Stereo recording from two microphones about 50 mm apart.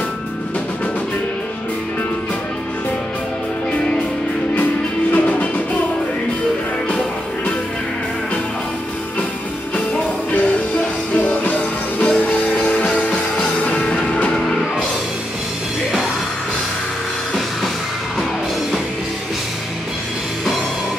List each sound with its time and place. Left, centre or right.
5.1 s music: left
11.1 s music: left